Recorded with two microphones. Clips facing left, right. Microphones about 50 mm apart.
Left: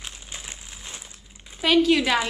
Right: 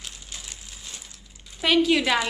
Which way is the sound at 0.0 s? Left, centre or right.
Left.